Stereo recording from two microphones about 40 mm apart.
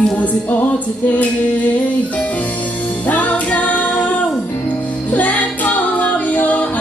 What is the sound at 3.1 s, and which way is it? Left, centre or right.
Music, left.